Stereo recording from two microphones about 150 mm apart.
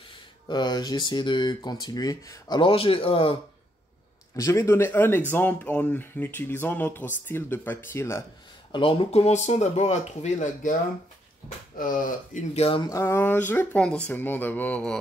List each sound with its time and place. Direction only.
0.5 s speech: 30° left (ahead or behind)
4.4 s speech: 20° left (ahead or behind)
8.7 s speech: 35° left (ahead or behind); by 10.7 s 55° left (ahead or behind)
11.4 s speech: 65° left (ahead or behind)
12.5 s speech: 40° left (ahead or behind)
12.8 s speech: 20° left (ahead or behind)